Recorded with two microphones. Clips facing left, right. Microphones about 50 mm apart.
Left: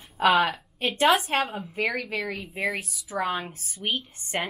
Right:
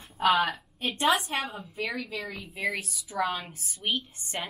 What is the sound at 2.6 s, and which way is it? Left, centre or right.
Speech, centre.